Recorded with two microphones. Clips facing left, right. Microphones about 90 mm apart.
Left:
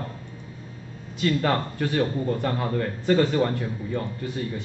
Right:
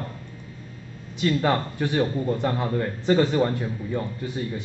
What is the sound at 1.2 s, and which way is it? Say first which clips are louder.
Speech: right 1 dB; 20° right (ahead or behind).